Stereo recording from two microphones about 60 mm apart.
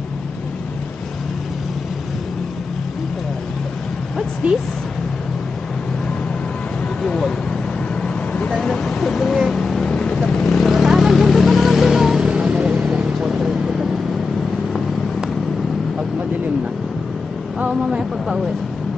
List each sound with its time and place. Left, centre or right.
4.4 s speech: right
7.0 s vehicle: centre
7.9 s vehicle: left
8.5 s a sound: centre
9.6 s boat: centre
9.9 s vehicle: centre
17.6 s a sound: centre